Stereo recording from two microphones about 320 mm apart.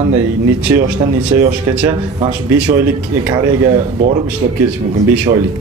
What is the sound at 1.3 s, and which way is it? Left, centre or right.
Speech, centre.